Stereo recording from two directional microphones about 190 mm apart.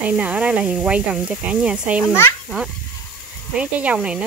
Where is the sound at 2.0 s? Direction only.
15° left (ahead or behind).